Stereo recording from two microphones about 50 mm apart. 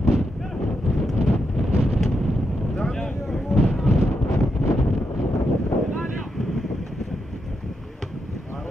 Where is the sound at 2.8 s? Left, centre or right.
Centre.